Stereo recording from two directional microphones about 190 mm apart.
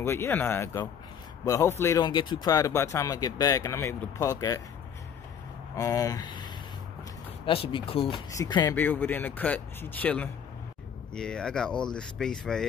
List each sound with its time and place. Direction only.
0.0 s speech: 15° left (ahead or behind)
5.8 s speech: 15° left (ahead or behind)
8.7 s speech: 10° left (ahead or behind)